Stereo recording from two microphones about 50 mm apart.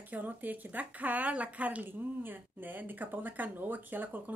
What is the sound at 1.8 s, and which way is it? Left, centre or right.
Speech, right.